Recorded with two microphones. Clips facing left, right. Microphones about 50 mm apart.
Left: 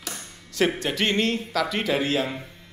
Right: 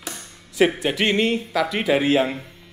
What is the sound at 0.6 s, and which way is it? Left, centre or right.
Speech, centre.